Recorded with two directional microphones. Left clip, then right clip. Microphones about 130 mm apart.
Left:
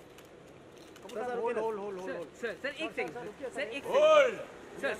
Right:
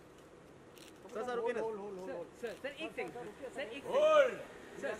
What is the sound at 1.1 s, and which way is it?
Speech, 45° right (ahead or behind).